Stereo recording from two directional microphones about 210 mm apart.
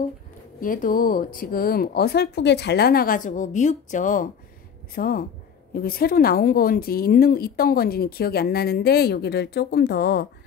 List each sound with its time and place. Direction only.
0.6 s speech: 40° left (ahead or behind)